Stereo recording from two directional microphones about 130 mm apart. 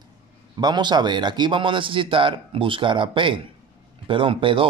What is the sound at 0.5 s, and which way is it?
A man's voice, 35° right (ahead or behind).